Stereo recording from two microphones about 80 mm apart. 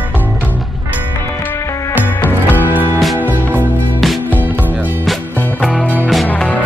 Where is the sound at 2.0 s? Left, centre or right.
Left.